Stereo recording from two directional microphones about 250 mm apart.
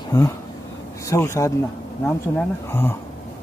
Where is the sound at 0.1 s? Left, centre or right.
Centre.